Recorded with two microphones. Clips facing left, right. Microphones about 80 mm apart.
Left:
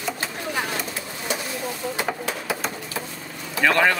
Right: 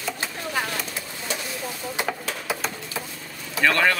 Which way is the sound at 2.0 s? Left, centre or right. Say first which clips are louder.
Even; centre.